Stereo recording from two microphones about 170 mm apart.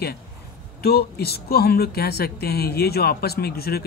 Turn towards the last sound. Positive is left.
turn(degrees=65)  # may be behind; listen again after turning